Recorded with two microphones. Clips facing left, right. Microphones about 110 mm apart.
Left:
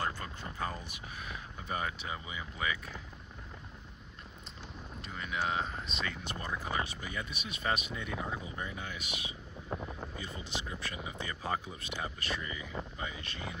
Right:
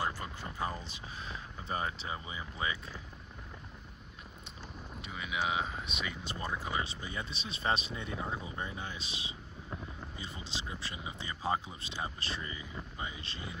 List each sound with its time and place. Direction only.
0.6 s a sound: 20° right (ahead or behind)
1.3 s speech: 30° right (ahead or behind)
5.0 s speech: 5° right (ahead or behind)
6.0 s speech: 20° right (ahead or behind)
10.6 s speech: 20° right (ahead or behind)